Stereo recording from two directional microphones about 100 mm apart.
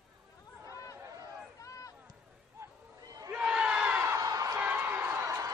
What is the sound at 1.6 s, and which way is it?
Run, 35° left (ahead or behind).